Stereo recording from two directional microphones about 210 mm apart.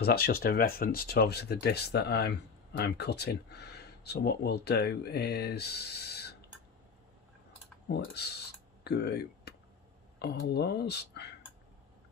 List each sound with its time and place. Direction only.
0.0 s speech: 45° left (ahead or behind)
7.9 s speech: 50° left (ahead or behind)
8.8 s computer keyboard: 50° left (ahead or behind)
10.1 s speech: 50° left (ahead or behind)